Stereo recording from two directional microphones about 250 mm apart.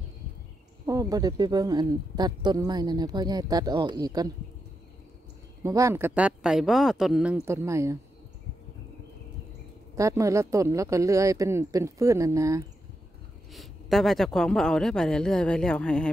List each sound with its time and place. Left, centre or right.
0.8 s speech: centre
5.6 s speech: centre
9.9 s speech: centre
13.5 s speech: centre